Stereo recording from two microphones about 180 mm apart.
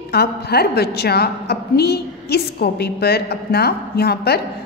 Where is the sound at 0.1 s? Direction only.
60° left (ahead or behind).